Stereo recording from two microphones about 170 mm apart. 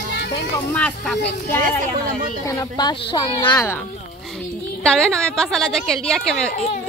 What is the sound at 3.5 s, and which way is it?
Speech, 15° left (ahead or behind).